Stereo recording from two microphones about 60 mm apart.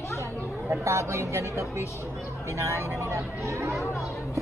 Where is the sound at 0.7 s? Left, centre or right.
Right.